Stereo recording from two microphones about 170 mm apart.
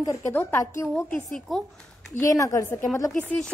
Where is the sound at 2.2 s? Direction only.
20° left (ahead or behind).